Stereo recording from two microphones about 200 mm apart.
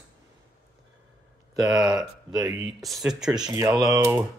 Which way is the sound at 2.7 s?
Centre (ahead or behind).